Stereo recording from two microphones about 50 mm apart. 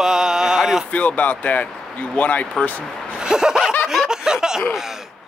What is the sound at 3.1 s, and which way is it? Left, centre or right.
Laughter, centre.